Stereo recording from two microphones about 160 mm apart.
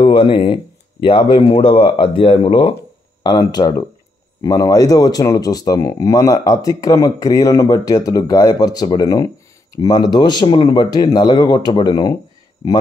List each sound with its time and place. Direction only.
0.0 s speech: 30° left (ahead or behind)